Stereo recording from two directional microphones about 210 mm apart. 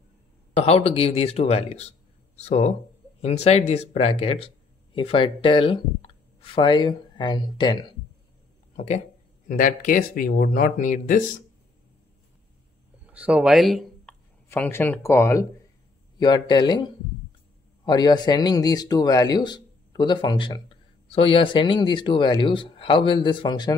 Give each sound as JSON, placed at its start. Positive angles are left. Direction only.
{"t": 0.6, "sound": "speech", "side_deg": 30}
{"t": 13.0, "sound": "speech", "side_deg": -5}